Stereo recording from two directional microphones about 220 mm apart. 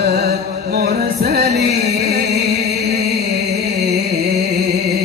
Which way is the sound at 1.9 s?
50° right (ahead or behind).